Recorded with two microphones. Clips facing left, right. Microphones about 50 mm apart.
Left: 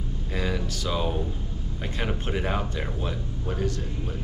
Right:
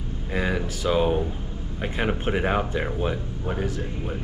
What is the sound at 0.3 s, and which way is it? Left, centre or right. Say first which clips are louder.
Speech: right 4 dB; right.